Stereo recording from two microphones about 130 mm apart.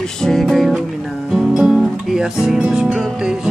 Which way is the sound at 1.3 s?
5° right (ahead or behind).